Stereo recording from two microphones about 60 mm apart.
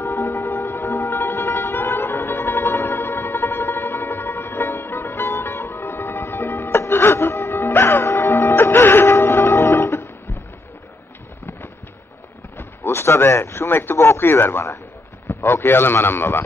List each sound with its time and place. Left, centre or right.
0.0 s music: left
12.5 s a man's voice: left